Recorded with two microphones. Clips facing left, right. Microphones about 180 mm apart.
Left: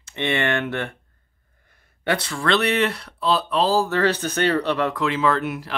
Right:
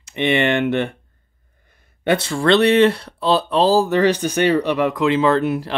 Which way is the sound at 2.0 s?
25° right (ahead or behind).